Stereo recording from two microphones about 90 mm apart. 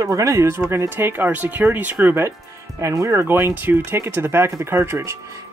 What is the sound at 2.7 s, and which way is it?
Speech, 35° right (ahead or behind).